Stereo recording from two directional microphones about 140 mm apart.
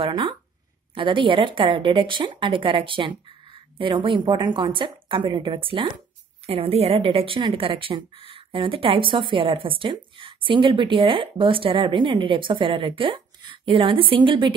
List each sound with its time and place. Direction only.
0.0 s speech: 35° right (ahead or behind)